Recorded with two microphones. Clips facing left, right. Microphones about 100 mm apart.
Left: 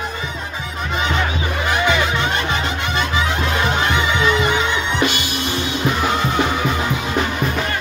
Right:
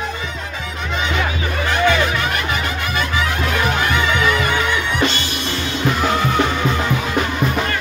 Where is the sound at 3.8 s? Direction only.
20° left (ahead or behind).